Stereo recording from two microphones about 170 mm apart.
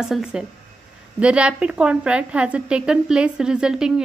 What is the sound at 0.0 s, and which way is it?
A woman's voice, 5° right (ahead or behind).